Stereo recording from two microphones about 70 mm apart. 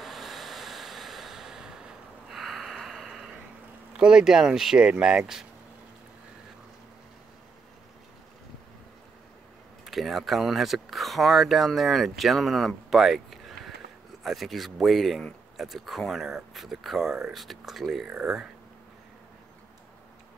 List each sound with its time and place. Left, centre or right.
0.0 s a sound: centre
3.9 s speech: centre
9.8 s speech: centre